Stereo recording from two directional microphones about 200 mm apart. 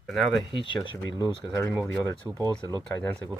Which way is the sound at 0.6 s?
25° left (ahead or behind).